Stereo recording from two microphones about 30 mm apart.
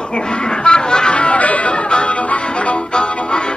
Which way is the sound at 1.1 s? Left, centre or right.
Left.